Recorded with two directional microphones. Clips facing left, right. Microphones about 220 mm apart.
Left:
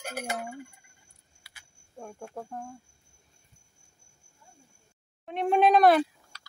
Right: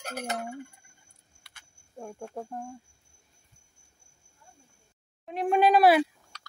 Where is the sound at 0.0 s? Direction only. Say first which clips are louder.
Right 1 dB; 10° left (ahead or behind).